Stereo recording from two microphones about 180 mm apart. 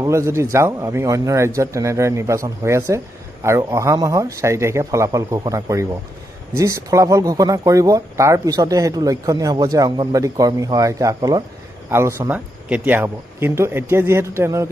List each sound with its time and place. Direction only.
0.0 s speech: 15° right (ahead or behind)